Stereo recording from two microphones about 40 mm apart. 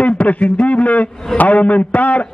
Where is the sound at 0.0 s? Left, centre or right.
Left.